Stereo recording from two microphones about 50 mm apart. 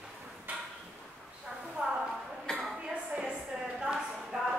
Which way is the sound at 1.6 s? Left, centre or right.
Centre.